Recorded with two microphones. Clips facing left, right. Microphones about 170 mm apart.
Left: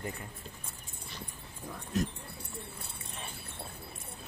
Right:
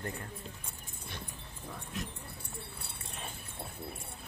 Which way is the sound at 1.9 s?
40° left (ahead or behind).